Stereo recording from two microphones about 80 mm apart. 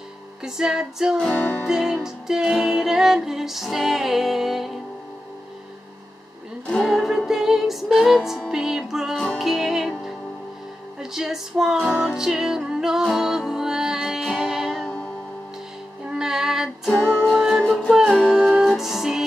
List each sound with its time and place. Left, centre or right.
0.4 s music: centre
6.7 s music: centre
9.1 s music: centre
9.4 s music: centre
16.1 s female singing: centre
17.0 s music: right
17.3 s music: centre